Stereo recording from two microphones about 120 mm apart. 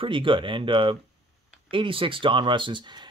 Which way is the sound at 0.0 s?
45° right (ahead or behind).